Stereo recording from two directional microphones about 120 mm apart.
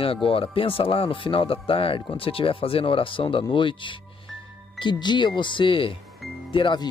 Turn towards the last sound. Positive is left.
turn(degrees=40)  # may be behind; listen again after turning